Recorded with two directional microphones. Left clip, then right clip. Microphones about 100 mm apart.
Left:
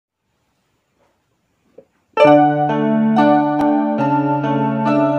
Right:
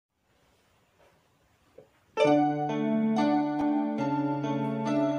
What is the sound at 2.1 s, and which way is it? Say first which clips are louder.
Music: left 13 dB; 40° left (ahead or behind).